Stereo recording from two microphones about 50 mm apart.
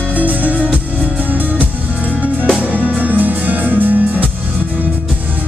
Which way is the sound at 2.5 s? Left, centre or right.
Right.